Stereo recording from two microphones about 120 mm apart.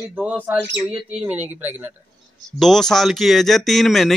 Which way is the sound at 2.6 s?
5° left (ahead or behind).